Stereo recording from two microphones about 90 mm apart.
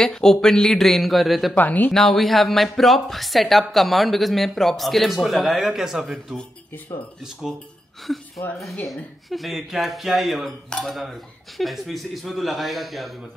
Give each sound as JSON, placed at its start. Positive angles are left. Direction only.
{"t": 0.0, "sound": "speech", "side_deg": 5}
{"t": 1.5, "sound": "speech", "side_deg": 20}
{"t": 1.9, "sound": "speech", "side_deg": 5}
{"t": 8.8, "sound": "speech", "side_deg": 0}